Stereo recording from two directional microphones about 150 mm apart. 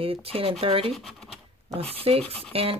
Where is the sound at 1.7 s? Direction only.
40° right (ahead or behind).